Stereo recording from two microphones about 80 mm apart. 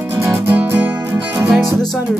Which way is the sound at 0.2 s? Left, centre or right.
Right.